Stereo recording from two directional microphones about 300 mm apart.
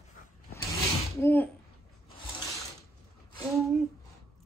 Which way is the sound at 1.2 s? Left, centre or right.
Centre.